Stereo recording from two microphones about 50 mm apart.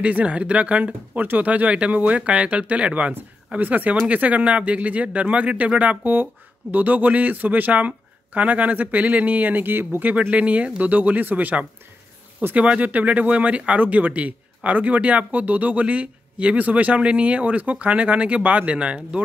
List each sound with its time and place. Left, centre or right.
0.0 s speech: right
10.3 s speech: right